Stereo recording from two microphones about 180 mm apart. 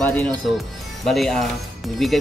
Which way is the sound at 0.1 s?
10° left (ahead or behind).